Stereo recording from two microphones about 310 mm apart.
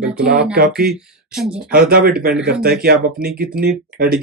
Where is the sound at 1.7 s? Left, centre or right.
Right.